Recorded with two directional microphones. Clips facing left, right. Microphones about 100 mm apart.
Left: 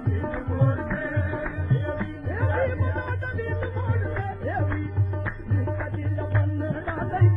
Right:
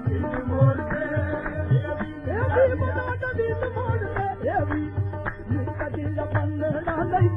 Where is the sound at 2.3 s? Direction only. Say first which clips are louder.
Right 6 dB; 45° right (ahead or behind).